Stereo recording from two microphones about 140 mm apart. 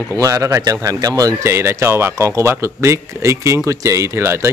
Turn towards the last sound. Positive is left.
turn(degrees=-20)  # may be behind; listen again after turning